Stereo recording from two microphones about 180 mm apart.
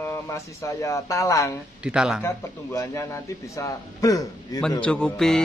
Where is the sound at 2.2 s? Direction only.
15° left (ahead or behind).